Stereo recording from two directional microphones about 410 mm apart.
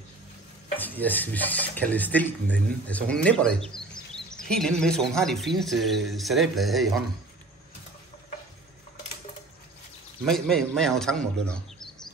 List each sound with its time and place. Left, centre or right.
0.7 s speech: centre
10.2 s speech: centre